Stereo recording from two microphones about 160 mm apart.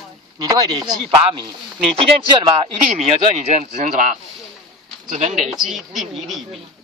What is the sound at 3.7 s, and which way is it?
Speech, 55° right (ahead or behind).